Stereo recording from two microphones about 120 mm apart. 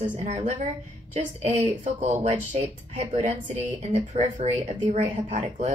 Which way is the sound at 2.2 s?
85° right.